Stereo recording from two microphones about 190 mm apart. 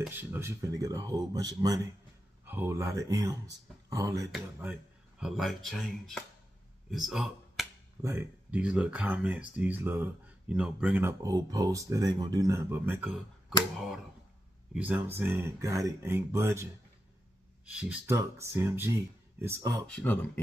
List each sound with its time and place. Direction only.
0.0 s speech: 10° right (ahead or behind)
5.2 s speech: centre (ahead or behind)
8.0 s speech: 10° right (ahead or behind)
14.7 s speech: 10° right (ahead or behind)
17.6 s speech: 5° right (ahead or behind)
19.9 s speech: 5° left (ahead or behind)